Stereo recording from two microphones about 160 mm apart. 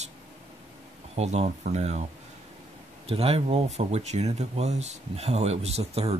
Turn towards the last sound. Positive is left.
turn(degrees=-40)  # may be behind; listen again after turning